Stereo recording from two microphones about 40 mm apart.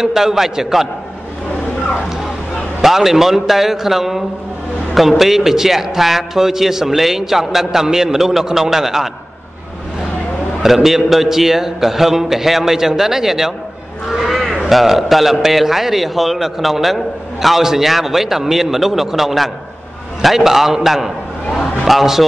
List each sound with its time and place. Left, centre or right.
0.0 s a man's voice: centre
2.8 s a man's voice: centre
10.6 s a man's voice: centre